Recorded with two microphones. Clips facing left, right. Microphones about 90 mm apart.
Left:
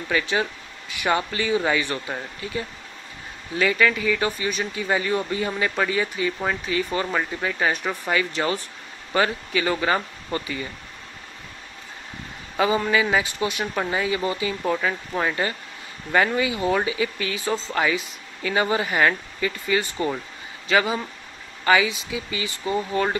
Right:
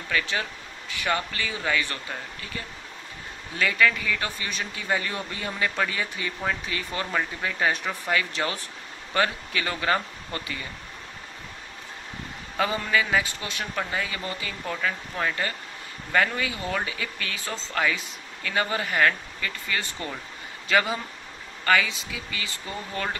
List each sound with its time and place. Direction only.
0.1 s speech: 20° left (ahead or behind)
3.5 s speech: 5° left (ahead or behind)
12.5 s speech: 10° left (ahead or behind)
20.6 s speech: 5° left (ahead or behind)